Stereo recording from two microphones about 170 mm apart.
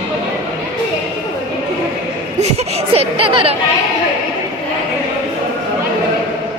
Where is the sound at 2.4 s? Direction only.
40° right (ahead or behind).